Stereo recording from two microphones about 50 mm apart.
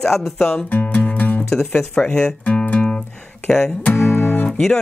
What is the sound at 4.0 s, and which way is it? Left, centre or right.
Music, left.